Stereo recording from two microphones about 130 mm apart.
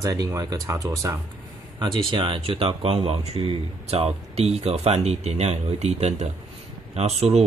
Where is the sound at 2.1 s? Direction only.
40° right (ahead or behind).